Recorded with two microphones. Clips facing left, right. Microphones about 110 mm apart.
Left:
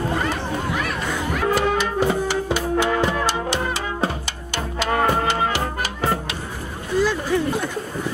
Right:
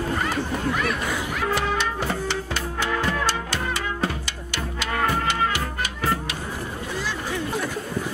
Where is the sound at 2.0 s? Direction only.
15° left (ahead or behind); by 6.0 s 30° left (ahead or behind).